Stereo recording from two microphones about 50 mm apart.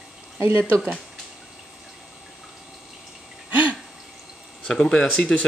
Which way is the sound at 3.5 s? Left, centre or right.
Right.